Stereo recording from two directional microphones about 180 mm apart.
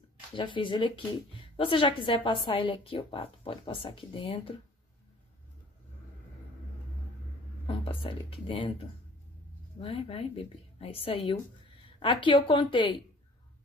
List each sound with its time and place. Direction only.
0.3 s a woman's voice: 30° left (ahead or behind)
7.6 s a woman's voice: 30° left (ahead or behind)